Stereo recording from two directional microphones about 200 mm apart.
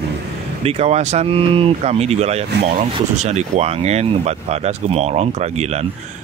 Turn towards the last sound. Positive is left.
turn(degrees=-35)  # may be behind; listen again after turning